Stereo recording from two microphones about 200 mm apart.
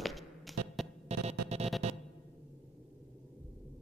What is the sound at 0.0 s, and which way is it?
Music, centre (ahead or behind).